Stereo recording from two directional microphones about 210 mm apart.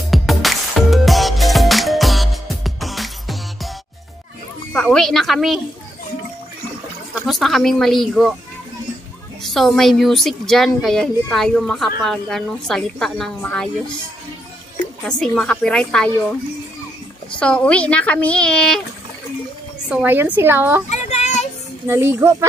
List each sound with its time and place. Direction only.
0.1 s music: centre (ahead or behind)
4.7 s speech: centre (ahead or behind)
7.2 s speech: centre (ahead or behind)
9.4 s speech: centre (ahead or behind)
15.0 s speech: centre (ahead or behind)
19.9 s a woman's voice: 5° right (ahead or behind)
20.9 s child singing: 30° left (ahead or behind)
21.8 s a woman's voice: 10° right (ahead or behind)